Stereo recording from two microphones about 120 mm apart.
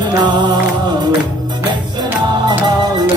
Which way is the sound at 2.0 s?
35° right (ahead or behind).